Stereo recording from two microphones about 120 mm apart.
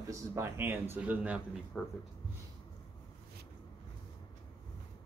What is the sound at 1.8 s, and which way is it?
Speech, 5° left (ahead or behind).